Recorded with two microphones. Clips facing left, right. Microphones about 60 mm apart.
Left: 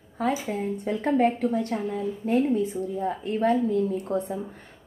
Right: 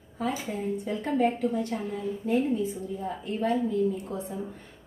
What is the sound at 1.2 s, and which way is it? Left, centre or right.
A woman's voice, left.